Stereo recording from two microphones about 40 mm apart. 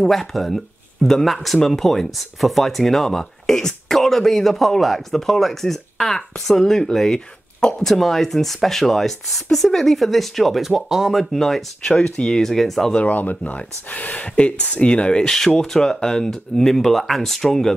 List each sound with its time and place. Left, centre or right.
0.0 s speech: centre
11.9 s speech: centre
12.4 s speech: centre
12.9 s speech: left
15.3 s speech: centre